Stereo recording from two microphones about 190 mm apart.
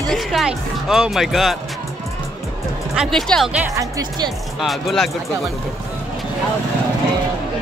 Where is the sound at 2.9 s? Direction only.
Centre (ahead or behind).